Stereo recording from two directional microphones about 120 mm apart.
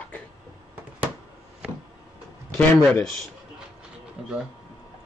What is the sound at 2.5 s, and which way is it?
Speech, 15° left (ahead or behind).